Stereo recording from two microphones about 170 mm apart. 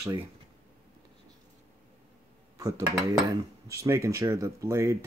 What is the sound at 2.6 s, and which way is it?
Speech, 20° right (ahead or behind).